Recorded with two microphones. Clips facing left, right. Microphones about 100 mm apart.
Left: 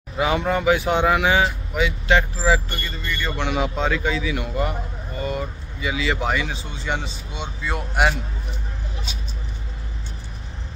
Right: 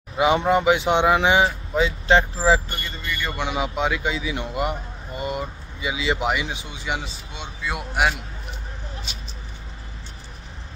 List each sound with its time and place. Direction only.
0.2 s speech: 25° right (ahead or behind)
3.1 s a man's voice: 5° right (ahead or behind)